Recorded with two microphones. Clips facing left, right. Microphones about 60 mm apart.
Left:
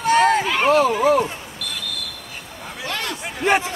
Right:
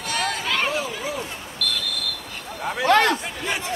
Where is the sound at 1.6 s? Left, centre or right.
Centre.